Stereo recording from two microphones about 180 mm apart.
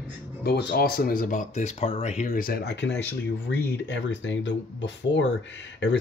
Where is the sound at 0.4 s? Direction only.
65° left (ahead or behind).